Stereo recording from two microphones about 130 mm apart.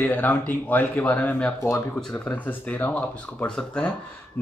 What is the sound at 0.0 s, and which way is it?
Speech, 15° left (ahead or behind).